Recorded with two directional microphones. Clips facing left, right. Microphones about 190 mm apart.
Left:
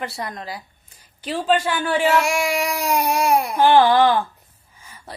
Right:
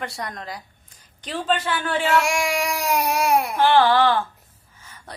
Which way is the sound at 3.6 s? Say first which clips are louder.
Left 3 dB; 15° left (ahead or behind).